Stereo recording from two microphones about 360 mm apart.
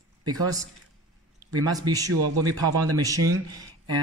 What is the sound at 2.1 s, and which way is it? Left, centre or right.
Speech, right.